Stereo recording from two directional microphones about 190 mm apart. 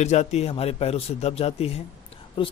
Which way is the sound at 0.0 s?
35° left (ahead or behind).